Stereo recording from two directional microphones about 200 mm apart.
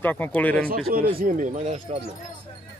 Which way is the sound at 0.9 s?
50° right (ahead or behind).